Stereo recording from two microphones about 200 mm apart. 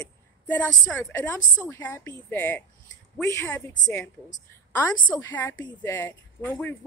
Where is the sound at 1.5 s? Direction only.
10° left (ahead or behind).